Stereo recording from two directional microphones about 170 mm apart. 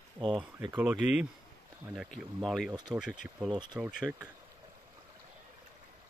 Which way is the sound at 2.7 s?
25° right (ahead or behind).